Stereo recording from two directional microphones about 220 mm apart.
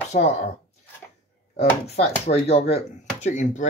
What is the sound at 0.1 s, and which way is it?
Speech, 30° left (ahead or behind).